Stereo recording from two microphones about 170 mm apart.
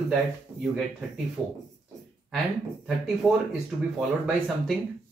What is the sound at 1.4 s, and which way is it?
Speech, centre (ahead or behind).